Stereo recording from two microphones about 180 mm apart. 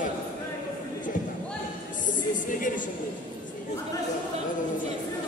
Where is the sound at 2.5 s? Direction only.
50° left (ahead or behind).